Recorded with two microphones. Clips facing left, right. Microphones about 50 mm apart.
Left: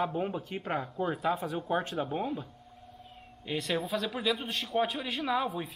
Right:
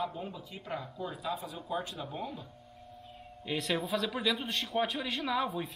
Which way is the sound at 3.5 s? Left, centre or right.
Centre.